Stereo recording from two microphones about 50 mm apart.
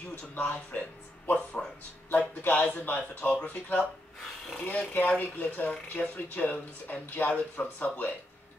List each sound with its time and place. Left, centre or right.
0.1 s speech: left